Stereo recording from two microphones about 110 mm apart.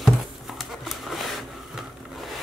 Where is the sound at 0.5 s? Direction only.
Centre (ahead or behind).